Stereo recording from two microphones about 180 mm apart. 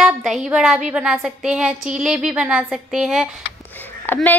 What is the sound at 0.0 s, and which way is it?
A woman's voice, centre (ahead or behind).